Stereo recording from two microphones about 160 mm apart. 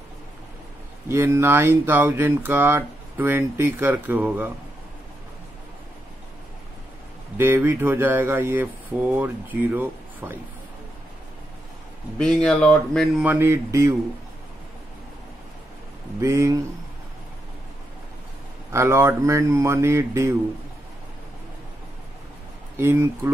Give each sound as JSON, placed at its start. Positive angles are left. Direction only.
{"t": 1.0, "sound": "speech", "side_deg": -15}
{"t": 7.3, "sound": "speech", "side_deg": -15}
{"t": 12.2, "sound": "speech", "side_deg": 5}
{"t": 13.2, "sound": "speech", "side_deg": -15}
{"t": 16.2, "sound": "speech", "side_deg": -20}
{"t": 18.7, "sound": "speech", "side_deg": -15}
{"t": 22.8, "sound": "speech", "side_deg": -15}